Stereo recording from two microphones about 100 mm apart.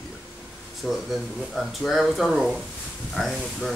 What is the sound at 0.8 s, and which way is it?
Speech, centre (ahead or behind).